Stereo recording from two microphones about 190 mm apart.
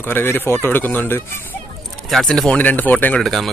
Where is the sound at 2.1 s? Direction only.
Centre (ahead or behind).